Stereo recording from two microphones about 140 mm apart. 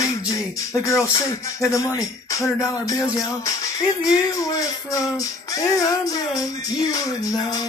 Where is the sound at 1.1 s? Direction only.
25° left (ahead or behind).